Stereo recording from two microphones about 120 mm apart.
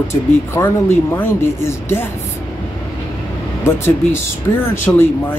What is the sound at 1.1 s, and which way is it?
Speech, 20° left (ahead or behind).